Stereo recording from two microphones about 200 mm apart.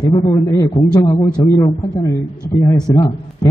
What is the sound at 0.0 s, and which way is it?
A man's voice, 15° left (ahead or behind).